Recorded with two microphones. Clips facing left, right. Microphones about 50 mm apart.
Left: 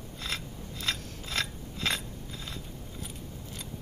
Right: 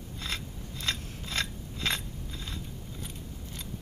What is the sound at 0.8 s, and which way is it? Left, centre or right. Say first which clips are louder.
Gears: even; centre.